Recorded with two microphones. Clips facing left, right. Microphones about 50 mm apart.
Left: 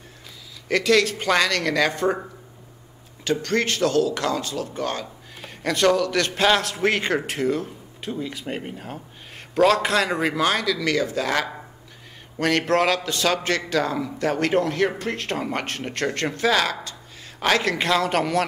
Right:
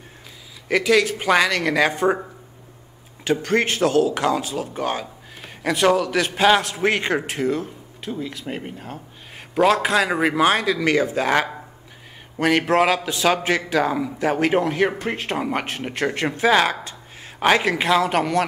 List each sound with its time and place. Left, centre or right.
0.7 s a man's voice: centre
3.3 s a man's voice: centre
10.3 s speech: right
12.4 s a man's voice: centre